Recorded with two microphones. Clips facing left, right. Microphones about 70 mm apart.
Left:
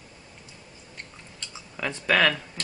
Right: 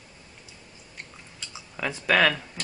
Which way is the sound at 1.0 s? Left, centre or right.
Centre.